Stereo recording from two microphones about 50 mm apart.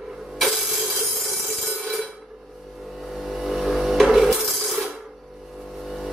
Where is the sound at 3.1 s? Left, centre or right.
Centre.